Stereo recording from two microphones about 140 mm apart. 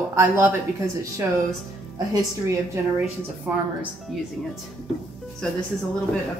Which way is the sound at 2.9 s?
10° right (ahead or behind).